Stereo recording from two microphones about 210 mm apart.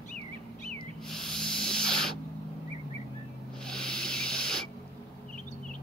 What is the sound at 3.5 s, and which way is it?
Rub, 5° left (ahead or behind).